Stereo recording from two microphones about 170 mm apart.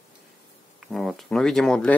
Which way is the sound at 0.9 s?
Centre (ahead or behind).